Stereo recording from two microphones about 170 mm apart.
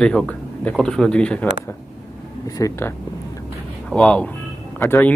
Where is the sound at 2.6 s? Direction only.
15° left (ahead or behind).